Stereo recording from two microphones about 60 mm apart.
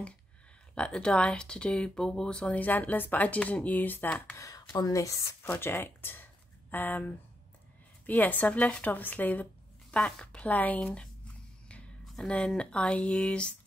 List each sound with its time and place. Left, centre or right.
0.7 s speech: centre
2.6 s speech: left
4.4 s speech: left
5.4 s speech: left
8.1 s speech: left
9.9 s speech: centre
12.3 s speech: centre